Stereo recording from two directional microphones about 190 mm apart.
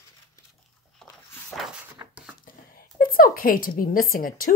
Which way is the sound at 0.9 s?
5° left (ahead or behind).